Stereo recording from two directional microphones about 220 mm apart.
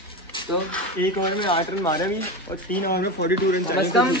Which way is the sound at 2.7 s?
45° left (ahead or behind).